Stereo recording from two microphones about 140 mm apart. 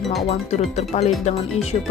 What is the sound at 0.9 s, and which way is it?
Speech, 40° left (ahead or behind).